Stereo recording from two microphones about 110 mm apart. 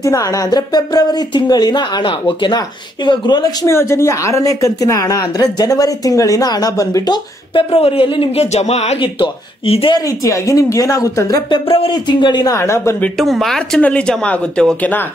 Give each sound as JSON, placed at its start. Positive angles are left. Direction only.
{"t": 0.0, "sound": "a woman's voice", "side_deg": 30}
{"t": 3.6, "sound": "a woman's voice", "side_deg": 25}
{"t": 7.5, "sound": "speech", "side_deg": 60}
{"t": 9.0, "sound": "speech", "side_deg": 55}
{"t": 10.0, "sound": "a woman's voice", "side_deg": 30}
{"t": 11.5, "sound": "speech", "side_deg": 55}
{"t": 11.9, "sound": "speech", "side_deg": 45}
{"t": 12.5, "sound": "a woman's voice", "side_deg": 25}
{"t": 13.2, "sound": "speech", "side_deg": 0}